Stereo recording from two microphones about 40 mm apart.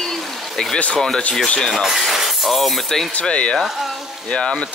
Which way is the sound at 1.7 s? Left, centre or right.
Centre.